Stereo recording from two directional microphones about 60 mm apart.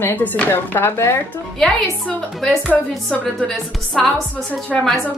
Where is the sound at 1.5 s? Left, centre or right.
Centre.